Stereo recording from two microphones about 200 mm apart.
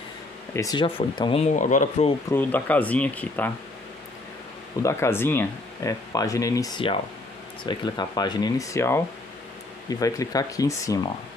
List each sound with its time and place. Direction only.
0.5 s speech: 15° left (ahead or behind); by 2.1 s 40° left (ahead or behind)
2.2 s speech: 10° left (ahead or behind)
4.8 s speech: 10° left (ahead or behind)